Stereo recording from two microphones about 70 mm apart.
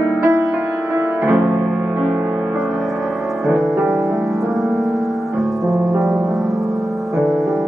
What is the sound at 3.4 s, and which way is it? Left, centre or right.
Music, centre.